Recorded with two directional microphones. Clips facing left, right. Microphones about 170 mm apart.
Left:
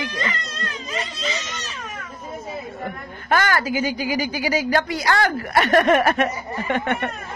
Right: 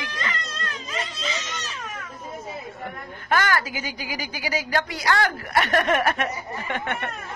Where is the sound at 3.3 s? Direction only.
30° left (ahead or behind).